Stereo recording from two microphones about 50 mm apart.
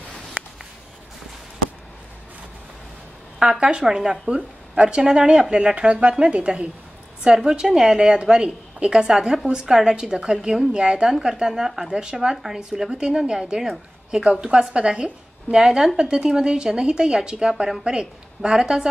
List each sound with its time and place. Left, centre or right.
3.3 s a woman's voice: centre
9.1 s a woman's voice: centre
9.9 s a woman's voice: centre
15.5 s a woman's voice: centre